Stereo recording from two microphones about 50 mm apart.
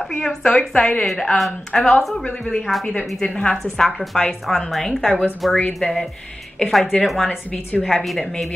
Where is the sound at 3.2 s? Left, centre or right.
Left.